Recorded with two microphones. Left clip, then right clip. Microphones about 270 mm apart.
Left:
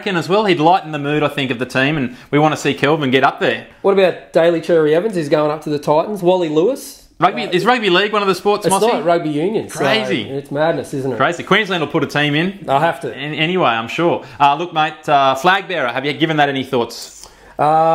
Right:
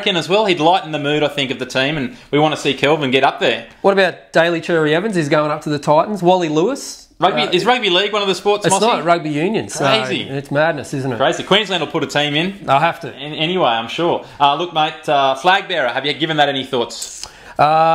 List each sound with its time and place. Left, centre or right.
0.0 s speech: left
3.8 s speech: right
7.2 s speech: left
8.9 s speech: right
9.8 s speech: left
10.3 s speech: right
11.1 s speech: left
12.6 s speech: right
13.4 s speech: left
17.6 s speech: right